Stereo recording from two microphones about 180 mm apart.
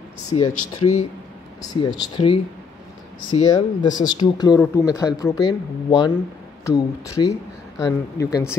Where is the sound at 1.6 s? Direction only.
20° left (ahead or behind).